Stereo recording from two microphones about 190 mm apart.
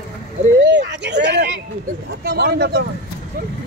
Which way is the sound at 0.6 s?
65° right (ahead or behind).